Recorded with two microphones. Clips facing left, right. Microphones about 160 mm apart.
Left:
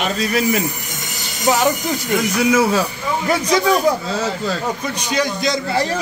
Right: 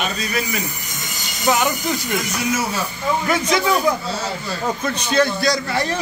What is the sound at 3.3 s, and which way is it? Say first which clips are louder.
Speech: left 4 dB; 35° left (ahead or behind).